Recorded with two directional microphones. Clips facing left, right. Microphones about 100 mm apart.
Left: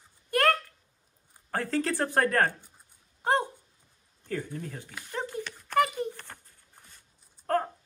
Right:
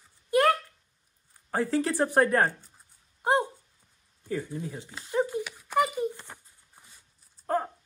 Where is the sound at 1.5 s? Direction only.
15° right (ahead or behind).